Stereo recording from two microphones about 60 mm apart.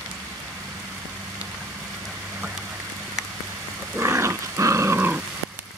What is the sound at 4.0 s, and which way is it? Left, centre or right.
Dog, right.